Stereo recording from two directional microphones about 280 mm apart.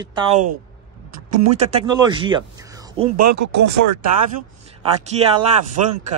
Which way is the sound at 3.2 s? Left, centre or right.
Right.